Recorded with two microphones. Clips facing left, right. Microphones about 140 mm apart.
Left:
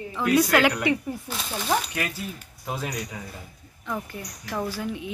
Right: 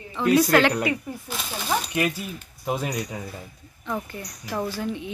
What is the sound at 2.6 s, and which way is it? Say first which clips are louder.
Speech: right 4 dB; 20° right (ahead or behind).